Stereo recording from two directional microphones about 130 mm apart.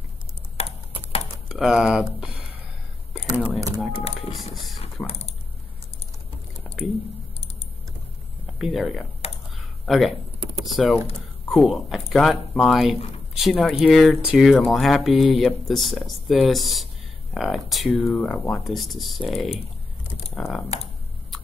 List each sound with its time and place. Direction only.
0.6 s computer keyboard: 50° left (ahead or behind)
1.5 s speech: 5° right (ahead or behind)
3.1 s typing: centre (ahead or behind)
4.8 s typing: 50° left (ahead or behind)
8.5 s speech: centre (ahead or behind)
9.2 s computer keyboard: 50° left (ahead or behind)
9.8 s speech: centre (ahead or behind)
18.0 s speech: 10° left (ahead or behind)